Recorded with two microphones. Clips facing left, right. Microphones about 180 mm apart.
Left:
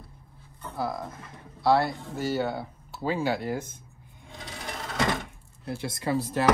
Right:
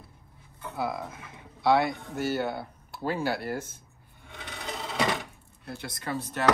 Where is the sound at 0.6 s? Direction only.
5° right (ahead or behind).